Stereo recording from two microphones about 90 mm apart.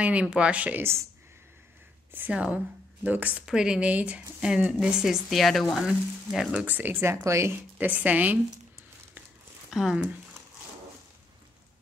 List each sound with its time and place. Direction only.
0.0 s speech: 15° right (ahead or behind)
2.1 s speech: 15° right (ahead or behind)
3.4 s speech: 10° right (ahead or behind)
6.5 s speech: 15° right (ahead or behind)
7.8 s speech: 15° right (ahead or behind)
9.7 s speech: 5° right (ahead or behind)